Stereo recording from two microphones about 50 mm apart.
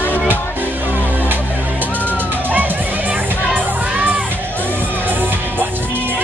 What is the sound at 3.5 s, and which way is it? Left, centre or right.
Music, right.